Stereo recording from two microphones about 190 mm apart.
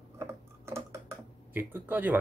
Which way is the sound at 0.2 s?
15° right (ahead or behind).